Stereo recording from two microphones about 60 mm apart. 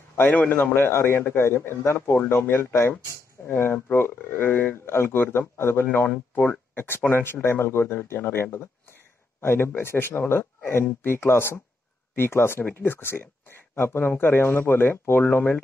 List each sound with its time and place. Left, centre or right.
0.3 s speech: left
0.7 s speech: left
4.8 s speech: left
6.7 s a sound: left
7.1 s speech: left